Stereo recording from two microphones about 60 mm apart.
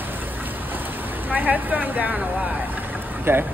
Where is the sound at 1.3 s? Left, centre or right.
Right.